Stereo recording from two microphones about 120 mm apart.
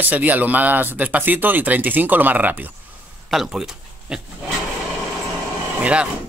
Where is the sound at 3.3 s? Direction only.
5° right (ahead or behind).